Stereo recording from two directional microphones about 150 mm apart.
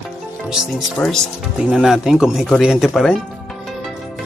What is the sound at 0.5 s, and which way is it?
Speech, centre (ahead or behind).